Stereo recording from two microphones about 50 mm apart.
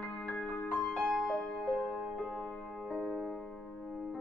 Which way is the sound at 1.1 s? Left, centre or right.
Centre.